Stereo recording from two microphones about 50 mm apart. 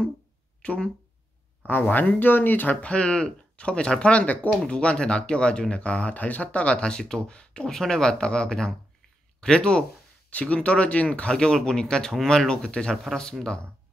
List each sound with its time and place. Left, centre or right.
0.6 s speech: left
1.7 s speech: left; by 13.6 s centre